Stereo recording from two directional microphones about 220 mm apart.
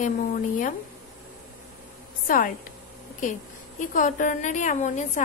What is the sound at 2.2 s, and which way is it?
Speech, 40° left (ahead or behind).